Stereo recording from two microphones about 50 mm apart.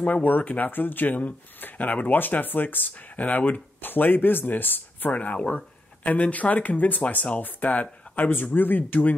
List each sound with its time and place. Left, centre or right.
0.0 s speech: left
5.1 s speech: left